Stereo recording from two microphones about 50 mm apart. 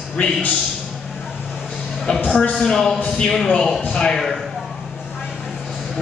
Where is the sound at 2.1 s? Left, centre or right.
Centre.